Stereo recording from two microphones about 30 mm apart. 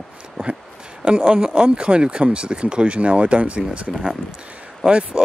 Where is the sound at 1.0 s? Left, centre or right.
Right.